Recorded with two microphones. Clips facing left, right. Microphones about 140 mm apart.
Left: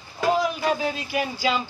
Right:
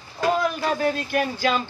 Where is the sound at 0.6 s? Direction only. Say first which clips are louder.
Right 1 dB; 5° left (ahead or behind).